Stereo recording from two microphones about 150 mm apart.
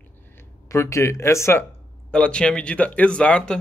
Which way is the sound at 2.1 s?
5° left (ahead or behind).